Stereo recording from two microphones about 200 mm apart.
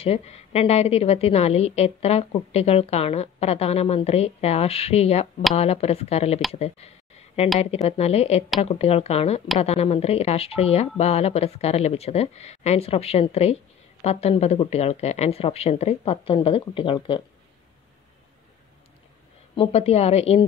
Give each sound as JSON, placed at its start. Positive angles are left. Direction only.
{"t": 0.0, "sound": "a woman's voice", "side_deg": 30}
{"t": 19.5, "sound": "a woman's voice", "side_deg": 30}